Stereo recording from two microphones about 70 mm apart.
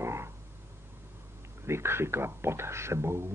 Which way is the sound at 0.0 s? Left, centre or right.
Right.